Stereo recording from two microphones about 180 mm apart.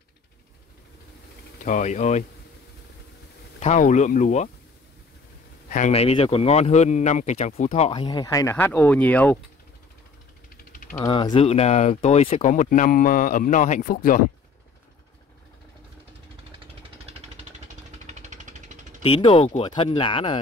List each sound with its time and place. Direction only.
1.6 s speech: 40° left (ahead or behind)
3.5 s speech: 40° left (ahead or behind)
5.7 s speech: 40° left (ahead or behind)
7.9 s speech: 25° left (ahead or behind)
10.6 s a sound: 50° left (ahead or behind)
11.1 s speech: 25° left (ahead or behind); by 14.2 s 50° left (ahead or behind)
17.0 s a sound: 40° right (ahead or behind)
19.0 s speech: 30° left (ahead or behind)